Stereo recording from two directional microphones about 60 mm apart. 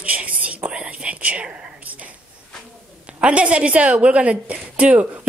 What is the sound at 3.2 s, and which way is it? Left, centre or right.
A woman's voice, centre.